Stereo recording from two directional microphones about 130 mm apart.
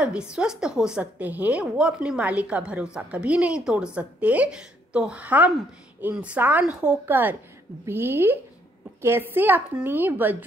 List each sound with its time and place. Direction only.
0.0 s a woman's voice: 5° right (ahead or behind)